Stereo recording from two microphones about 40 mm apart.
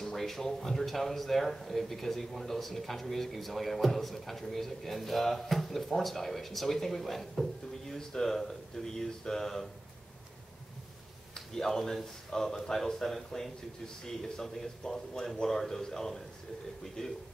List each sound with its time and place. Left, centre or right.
0.0 s a man's voice: centre
11.3 s a man's voice: centre